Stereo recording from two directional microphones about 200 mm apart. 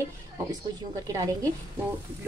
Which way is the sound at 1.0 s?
15° right (ahead or behind).